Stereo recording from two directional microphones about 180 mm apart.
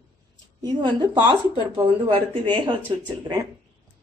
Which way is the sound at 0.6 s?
25° right (ahead or behind).